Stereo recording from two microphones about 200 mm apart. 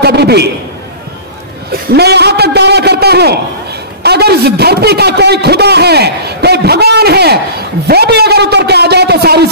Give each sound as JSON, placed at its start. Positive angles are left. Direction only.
{"t": 0.0, "sound": "a man's voice", "side_deg": -55}
{"t": 1.7, "sound": "a man's voice", "side_deg": -55}